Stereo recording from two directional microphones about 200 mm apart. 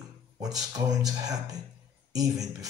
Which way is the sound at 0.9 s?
20° right (ahead or behind).